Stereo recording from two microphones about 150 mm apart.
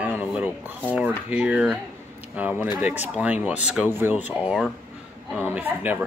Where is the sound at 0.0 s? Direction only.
10° right (ahead or behind).